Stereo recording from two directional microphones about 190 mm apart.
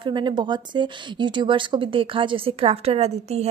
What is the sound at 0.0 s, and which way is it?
Speech, 25° right (ahead or behind).